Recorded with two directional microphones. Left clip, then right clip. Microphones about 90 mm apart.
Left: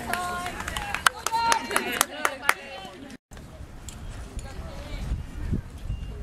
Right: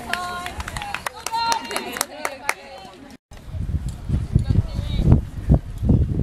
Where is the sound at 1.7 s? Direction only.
20° left (ahead or behind).